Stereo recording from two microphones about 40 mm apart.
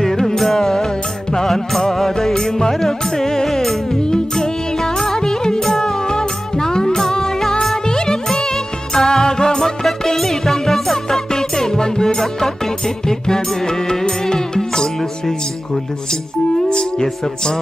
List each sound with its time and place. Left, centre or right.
0.0 s music: centre
4.0 s music: centre
9.8 s music: centre
16.5 s speech: centre